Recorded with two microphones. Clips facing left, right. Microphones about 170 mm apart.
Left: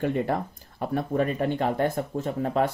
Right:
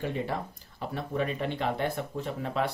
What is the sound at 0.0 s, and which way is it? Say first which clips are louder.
Speech: left 6 dB; 55° left (ahead or behind).